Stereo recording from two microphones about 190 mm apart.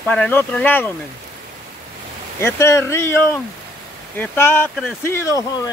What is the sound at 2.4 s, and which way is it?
Speech, 15° left (ahead or behind).